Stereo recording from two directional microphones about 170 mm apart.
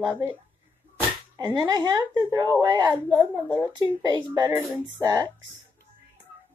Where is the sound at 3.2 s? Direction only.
10° right (ahead or behind).